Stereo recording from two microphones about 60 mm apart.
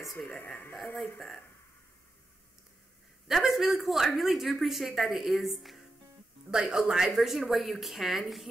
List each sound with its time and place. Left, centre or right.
0.4 s speech: left
3.3 s speech: centre